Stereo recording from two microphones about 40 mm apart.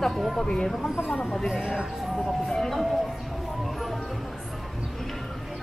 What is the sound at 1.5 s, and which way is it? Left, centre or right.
Speech, centre.